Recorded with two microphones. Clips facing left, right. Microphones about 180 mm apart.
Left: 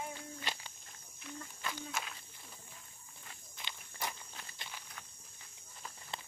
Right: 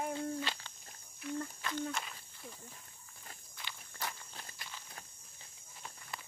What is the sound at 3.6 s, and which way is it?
Walk, 20° left (ahead or behind).